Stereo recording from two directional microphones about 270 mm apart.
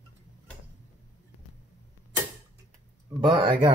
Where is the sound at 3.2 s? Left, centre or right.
Centre.